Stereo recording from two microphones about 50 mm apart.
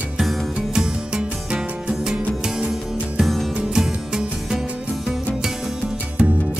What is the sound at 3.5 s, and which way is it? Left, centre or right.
Music, centre.